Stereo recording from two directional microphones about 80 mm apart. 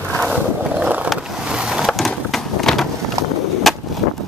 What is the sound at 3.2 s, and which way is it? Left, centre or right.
Skateboard, right.